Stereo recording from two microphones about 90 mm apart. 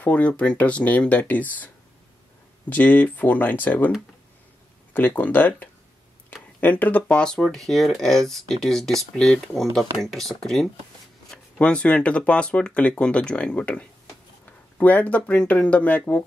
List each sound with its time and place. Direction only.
0.0 s speech: 15° left (ahead or behind)
2.7 s speech: 20° left (ahead or behind)
4.9 s speech: 20° left (ahead or behind)